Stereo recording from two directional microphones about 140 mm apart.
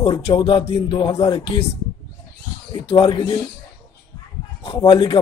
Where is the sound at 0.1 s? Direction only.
35° left (ahead or behind).